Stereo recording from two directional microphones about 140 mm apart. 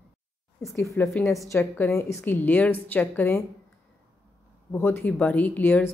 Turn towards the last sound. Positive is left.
turn(degrees=10)  # may be behind; listen again after turning